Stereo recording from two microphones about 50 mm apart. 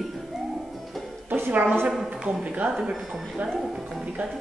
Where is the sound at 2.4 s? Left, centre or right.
Right.